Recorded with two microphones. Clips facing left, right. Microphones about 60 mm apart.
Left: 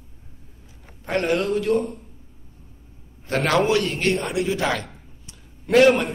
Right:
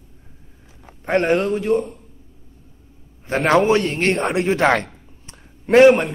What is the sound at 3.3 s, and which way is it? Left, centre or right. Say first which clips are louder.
A man's voice: right 4 dB; right.